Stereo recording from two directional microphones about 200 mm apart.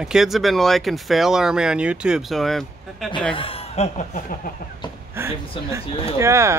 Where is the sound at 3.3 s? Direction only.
30° left (ahead or behind).